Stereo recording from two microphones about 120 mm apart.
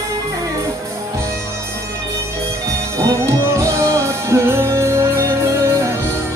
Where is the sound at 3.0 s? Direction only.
25° right (ahead or behind).